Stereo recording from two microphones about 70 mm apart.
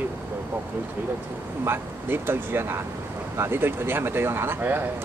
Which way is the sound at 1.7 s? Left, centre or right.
Right.